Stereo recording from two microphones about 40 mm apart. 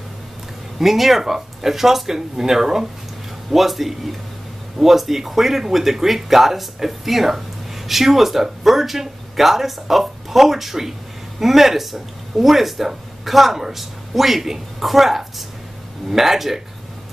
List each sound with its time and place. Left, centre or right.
0.7 s speech: centre